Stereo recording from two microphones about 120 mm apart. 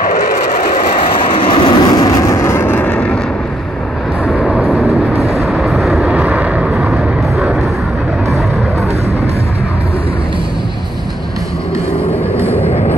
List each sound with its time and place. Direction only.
0.9 s vehicle: 45° left (ahead or behind); by 3.2 s 10° left (ahead or behind)
4.3 s vehicle: centre (ahead or behind)
12.4 s vehicle: 15° left (ahead or behind)